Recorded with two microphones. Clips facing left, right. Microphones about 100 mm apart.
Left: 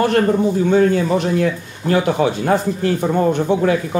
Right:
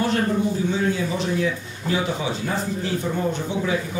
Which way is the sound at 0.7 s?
55° left (ahead or behind).